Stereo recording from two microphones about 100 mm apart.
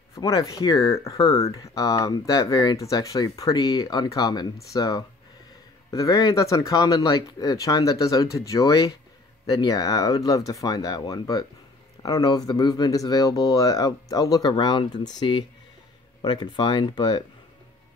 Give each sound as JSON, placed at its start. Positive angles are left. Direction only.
{"t": 0.1, "sound": "speech", "side_deg": 35}